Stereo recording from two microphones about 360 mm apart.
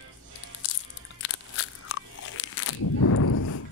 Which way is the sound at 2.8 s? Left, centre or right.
Left.